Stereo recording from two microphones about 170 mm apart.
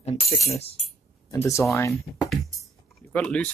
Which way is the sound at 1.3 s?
15° left (ahead or behind).